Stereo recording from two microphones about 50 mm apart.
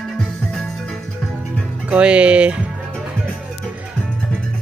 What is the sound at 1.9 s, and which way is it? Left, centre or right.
Speech, right.